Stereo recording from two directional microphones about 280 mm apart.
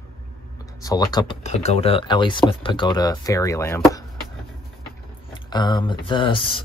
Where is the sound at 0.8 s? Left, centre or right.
Centre.